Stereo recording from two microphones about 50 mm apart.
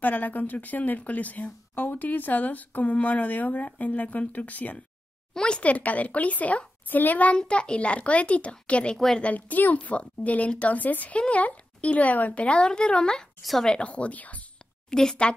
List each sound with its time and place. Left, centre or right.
0.0 s speech: left
5.3 s speech: centre
5.6 s a woman's voice: left
8.9 s a woman's voice: centre
9.2 s a woman's voice: left; by 13.2 s centre
13.4 s speech: centre
13.7 s a woman's voice: left
14.9 s a woman's voice: centre